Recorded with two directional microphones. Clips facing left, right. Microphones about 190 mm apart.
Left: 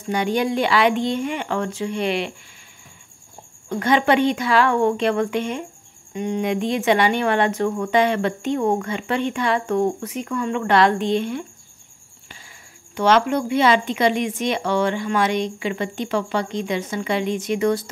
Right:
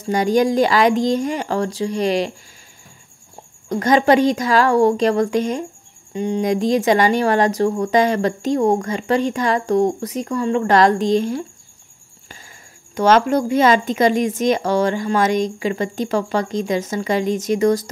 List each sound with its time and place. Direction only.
0.0 s speech: 40° right (ahead or behind)
3.6 s speech: 40° right (ahead or behind)
12.9 s speech: 40° right (ahead or behind)